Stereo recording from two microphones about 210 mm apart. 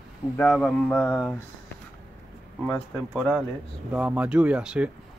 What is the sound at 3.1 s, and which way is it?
Speech, centre (ahead or behind).